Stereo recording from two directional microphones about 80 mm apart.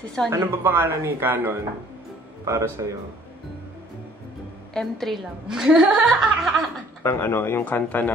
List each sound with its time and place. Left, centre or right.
0.3 s speech: right
2.4 s speech: right
4.7 s a woman's voice: centre
5.5 s speech: centre
7.0 s speech: left